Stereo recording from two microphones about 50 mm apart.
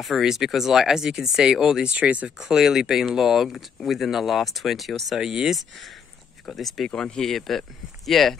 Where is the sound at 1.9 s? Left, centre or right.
Right.